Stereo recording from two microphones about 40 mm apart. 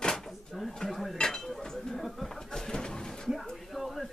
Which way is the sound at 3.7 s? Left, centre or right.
Centre.